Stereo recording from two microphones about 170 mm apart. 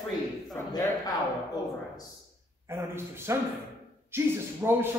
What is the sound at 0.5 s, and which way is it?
Speech, 20° left (ahead or behind).